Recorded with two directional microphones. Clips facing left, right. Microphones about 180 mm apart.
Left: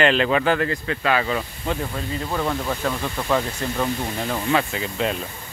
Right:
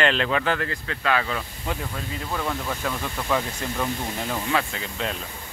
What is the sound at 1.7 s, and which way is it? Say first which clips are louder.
Speech: left 4 dB; 5° right (ahead or behind).